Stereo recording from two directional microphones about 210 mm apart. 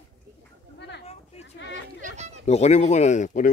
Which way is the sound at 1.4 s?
60° left (ahead or behind).